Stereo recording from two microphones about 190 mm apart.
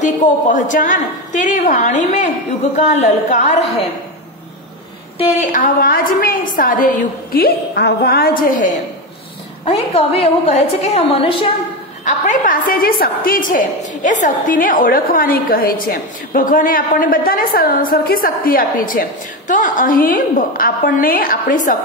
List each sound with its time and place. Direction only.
0.0 s a woman's voice: 40° left (ahead or behind)
5.2 s a woman's voice: 40° left (ahead or behind)
7.3 s a woman's voice: 55° left (ahead or behind)
9.7 s a woman's voice: 30° left (ahead or behind)
12.0 s a woman's voice: 45° left (ahead or behind)